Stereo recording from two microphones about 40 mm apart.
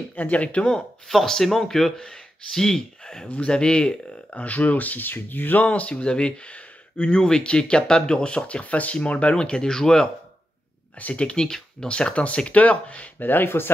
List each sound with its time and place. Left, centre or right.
0.1 s speech: left
0.7 s speech: centre; by 5.6 s left
5.6 s speech: left
6.0 s speech: left
9.4 s speech: centre
11.0 s speech: left
11.2 s speech: centre
11.9 s speech: left
13.2 s speech: left